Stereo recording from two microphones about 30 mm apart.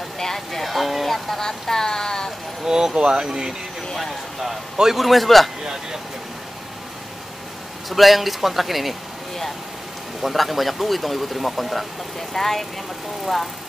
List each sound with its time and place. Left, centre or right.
0.2 s speech: centre
1.4 s speech: centre
2.6 s speech: right
4.9 s speech: centre
5.6 s speech: right
7.9 s speech: centre
10.2 s speech: centre
12.4 s speech: centre